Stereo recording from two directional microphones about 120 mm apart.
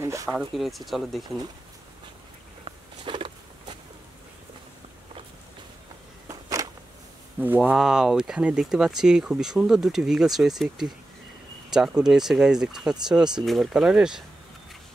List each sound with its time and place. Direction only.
0.0 s speech: 25° right (ahead or behind)
0.3 s speech: 5° right (ahead or behind)
2.6 s a sound: 45° right (ahead or behind)
6.2 s a sound: 25° right (ahead or behind)
7.3 s speech: 15° right (ahead or behind)
7.7 s speech: 5° right (ahead or behind)